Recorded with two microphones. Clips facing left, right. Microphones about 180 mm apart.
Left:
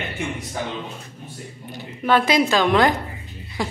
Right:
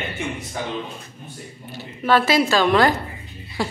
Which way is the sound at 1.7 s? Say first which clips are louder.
Even; 15° left (ahead or behind).